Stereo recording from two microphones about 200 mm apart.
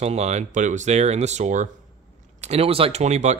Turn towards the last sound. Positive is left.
turn(degrees=-35)  # may be behind; listen again after turning